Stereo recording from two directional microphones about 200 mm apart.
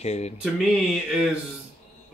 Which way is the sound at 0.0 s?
35° left (ahead or behind).